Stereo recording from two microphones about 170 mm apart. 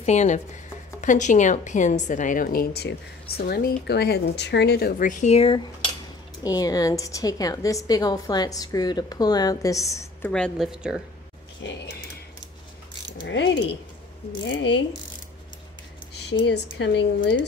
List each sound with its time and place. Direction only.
0.0 s a woman's voice: 45° left (ahead or behind)
6.4 s a woman's voice: 20° left (ahead or behind)
10.3 s speech: centre (ahead or behind)
13.2 s speech: 90° left
16.2 s speech: 85° left